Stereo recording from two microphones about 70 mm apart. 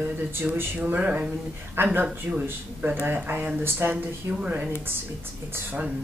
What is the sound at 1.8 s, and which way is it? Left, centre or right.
Speech, right.